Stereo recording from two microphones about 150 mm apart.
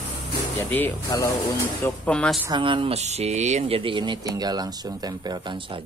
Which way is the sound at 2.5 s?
35° right (ahead or behind).